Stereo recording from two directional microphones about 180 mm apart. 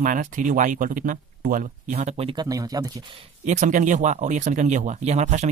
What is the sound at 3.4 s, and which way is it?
Speech, 40° right (ahead or behind).